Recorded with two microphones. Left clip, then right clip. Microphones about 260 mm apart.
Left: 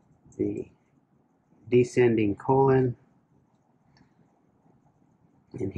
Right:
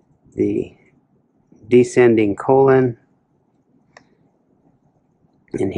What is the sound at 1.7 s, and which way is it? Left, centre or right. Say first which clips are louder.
Speech: right 9 dB; centre.